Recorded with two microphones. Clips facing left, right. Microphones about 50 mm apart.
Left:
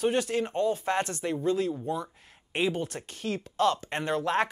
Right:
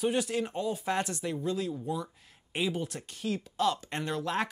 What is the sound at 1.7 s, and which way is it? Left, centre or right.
Speech, left.